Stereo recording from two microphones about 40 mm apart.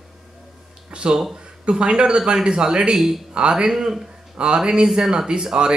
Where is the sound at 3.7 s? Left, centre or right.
Centre.